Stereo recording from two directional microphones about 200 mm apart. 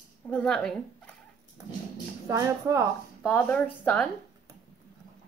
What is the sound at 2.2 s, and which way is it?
Speech, 15° right (ahead or behind).